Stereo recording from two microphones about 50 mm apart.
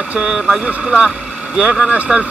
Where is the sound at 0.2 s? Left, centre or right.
Centre.